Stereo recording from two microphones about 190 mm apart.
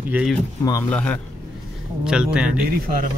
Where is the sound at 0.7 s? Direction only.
10° left (ahead or behind).